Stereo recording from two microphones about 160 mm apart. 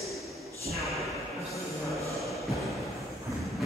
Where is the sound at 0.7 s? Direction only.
Centre (ahead or behind).